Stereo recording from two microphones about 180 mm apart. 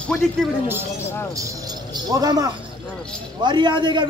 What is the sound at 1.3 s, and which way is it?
A man's voice, 20° right (ahead or behind).